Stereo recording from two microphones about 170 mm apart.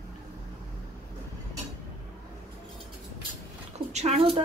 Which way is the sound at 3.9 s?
40° right (ahead or behind).